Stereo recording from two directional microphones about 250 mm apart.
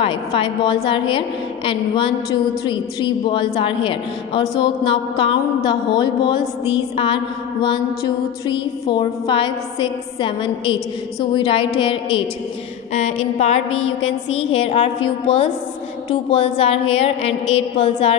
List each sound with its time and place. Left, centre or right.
0.0 s a woman's voice: left
8.5 s a woman's voice: centre